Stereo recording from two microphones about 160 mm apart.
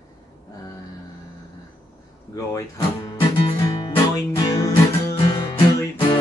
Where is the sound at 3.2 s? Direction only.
30° left (ahead or behind).